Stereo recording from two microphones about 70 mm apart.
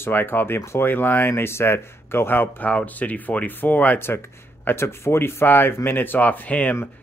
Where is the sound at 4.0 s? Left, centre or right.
Left.